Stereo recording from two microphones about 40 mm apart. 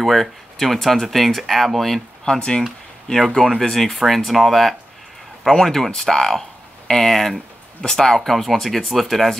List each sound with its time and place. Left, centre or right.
0.0 s speech: centre
2.2 s speech: centre